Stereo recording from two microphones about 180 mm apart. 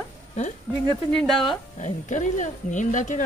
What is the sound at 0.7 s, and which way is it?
Speech, centre (ahead or behind).